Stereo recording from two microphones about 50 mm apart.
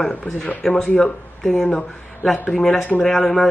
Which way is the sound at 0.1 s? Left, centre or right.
Left.